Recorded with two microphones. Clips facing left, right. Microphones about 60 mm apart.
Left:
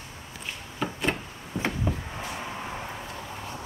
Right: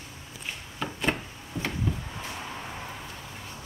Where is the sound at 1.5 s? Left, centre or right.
Left.